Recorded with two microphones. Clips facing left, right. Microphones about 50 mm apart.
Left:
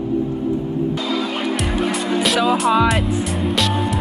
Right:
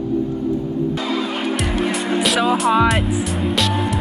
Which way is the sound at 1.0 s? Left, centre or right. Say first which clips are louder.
Even; right.